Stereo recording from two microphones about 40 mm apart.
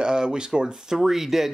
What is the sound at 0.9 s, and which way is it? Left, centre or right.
Speech, centre.